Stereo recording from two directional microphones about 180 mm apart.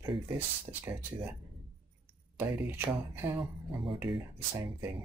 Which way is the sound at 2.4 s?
10° right (ahead or behind).